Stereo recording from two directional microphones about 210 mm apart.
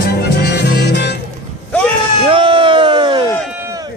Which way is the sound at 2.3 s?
25° right (ahead or behind).